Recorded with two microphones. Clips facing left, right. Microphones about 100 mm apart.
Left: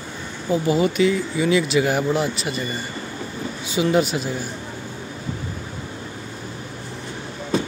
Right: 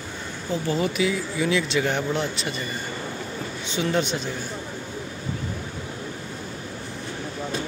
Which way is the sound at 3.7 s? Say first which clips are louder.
Left 5 dB; 5° left (ahead or behind).